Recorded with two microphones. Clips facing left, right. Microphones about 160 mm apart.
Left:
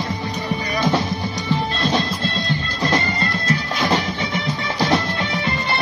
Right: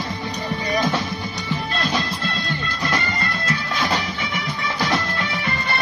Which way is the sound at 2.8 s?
30° left (ahead or behind).